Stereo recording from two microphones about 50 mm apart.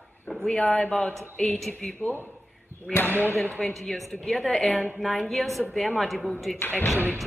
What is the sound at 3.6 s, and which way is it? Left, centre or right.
A woman's voice, centre.